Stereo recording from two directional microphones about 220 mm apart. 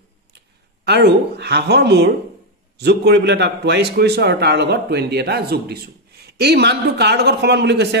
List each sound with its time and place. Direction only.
0.8 s a man's voice: 50° right (ahead or behind)